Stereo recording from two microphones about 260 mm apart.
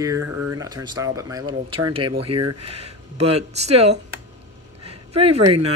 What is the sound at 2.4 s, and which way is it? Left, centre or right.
Speech, right.